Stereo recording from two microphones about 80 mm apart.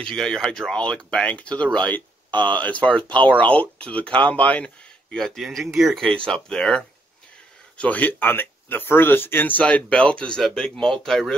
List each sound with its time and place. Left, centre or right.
0.0 s speech: centre
3.0 s speech: right
3.3 s speech: centre
5.9 s speech: centre